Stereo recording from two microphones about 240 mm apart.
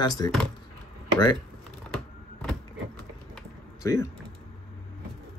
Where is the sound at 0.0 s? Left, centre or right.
Centre.